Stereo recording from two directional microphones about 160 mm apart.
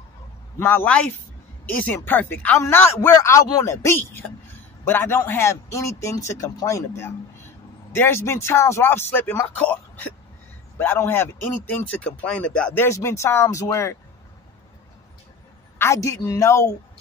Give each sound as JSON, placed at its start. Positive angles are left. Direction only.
{"t": 0.6, "sound": "speech", "side_deg": 15}
{"t": 15.8, "sound": "a woman's voice", "side_deg": 20}